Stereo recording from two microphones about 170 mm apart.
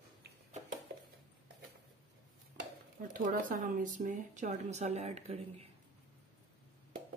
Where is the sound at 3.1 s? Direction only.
50° right (ahead or behind).